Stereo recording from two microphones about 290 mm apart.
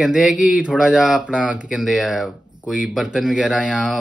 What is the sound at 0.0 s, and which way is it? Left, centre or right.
Speech, centre.